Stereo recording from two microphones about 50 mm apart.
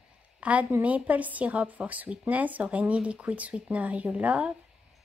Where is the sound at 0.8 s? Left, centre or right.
Right.